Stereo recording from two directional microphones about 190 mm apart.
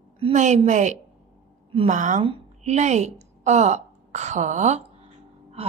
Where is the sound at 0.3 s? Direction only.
40° right (ahead or behind).